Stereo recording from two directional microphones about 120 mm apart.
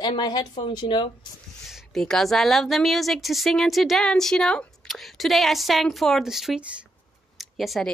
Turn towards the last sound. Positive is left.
turn(degrees=0)  # may be behind; listen again after turning